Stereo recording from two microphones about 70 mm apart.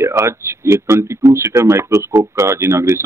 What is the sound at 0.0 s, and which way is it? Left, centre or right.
Speech, right.